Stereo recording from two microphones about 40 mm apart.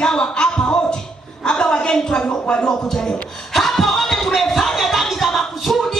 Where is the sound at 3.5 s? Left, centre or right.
Centre.